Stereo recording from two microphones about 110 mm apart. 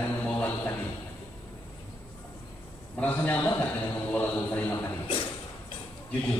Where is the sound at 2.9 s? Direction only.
15° left (ahead or behind).